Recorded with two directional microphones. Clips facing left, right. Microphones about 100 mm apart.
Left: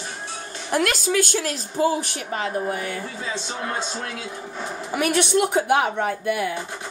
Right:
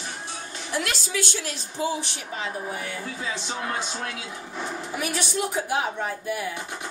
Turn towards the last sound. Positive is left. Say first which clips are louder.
# left 5 dB
turn(degrees=65)  # may be behind; listen again after turning